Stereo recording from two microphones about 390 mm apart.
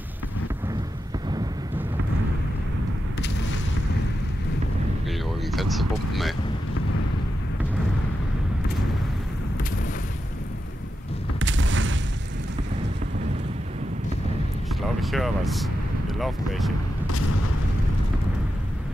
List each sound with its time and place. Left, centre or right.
5.0 s vehicle: centre
11.3 s boom: right
15.0 s speech: centre